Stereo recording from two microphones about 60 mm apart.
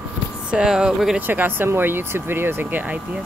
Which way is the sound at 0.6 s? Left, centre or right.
Centre.